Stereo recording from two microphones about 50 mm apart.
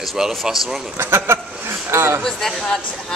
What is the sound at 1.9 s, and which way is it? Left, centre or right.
Speech, right.